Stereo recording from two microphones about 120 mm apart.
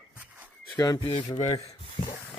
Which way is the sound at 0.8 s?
35° left (ahead or behind).